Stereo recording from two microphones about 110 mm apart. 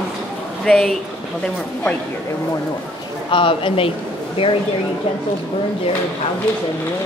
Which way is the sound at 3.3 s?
50° left (ahead or behind).